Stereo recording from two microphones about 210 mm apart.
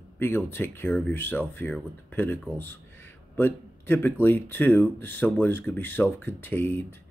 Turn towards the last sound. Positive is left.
turn(degrees=10)  # may be behind; listen again after turning